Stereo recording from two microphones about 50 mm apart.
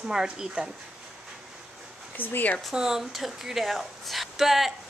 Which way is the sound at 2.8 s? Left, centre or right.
Centre.